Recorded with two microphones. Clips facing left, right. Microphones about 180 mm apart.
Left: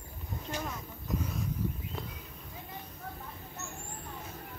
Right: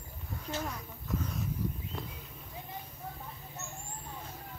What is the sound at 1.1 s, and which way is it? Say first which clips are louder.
Speech: left 1 dB; 20° left (ahead or behind).